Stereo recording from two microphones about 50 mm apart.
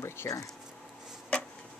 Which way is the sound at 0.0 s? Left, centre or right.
Left.